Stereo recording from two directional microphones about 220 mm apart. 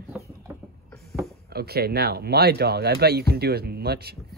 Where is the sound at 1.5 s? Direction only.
45° right (ahead or behind).